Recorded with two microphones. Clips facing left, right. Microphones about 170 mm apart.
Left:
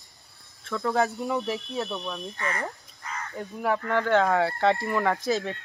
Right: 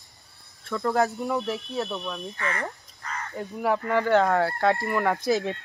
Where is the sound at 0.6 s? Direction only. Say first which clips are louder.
Right 1 dB; centre (ahead or behind).